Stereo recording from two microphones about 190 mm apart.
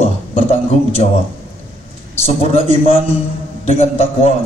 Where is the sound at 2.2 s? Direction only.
30° left (ahead or behind).